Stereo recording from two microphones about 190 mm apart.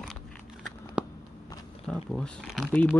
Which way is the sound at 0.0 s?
5° left (ahead or behind).